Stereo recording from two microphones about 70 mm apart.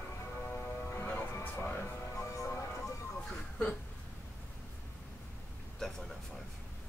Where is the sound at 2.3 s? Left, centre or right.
Left.